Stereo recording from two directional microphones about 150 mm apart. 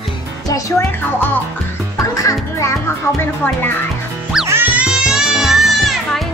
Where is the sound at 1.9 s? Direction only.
20° left (ahead or behind).